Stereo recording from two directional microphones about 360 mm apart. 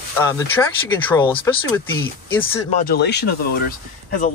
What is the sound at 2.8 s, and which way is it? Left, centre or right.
Speech, left.